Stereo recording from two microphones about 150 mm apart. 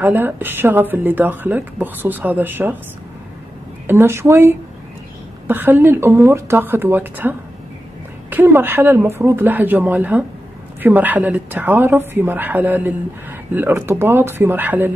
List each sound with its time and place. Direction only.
0.0 s speech: 15° right (ahead or behind)
3.8 s speech: 15° right (ahead or behind)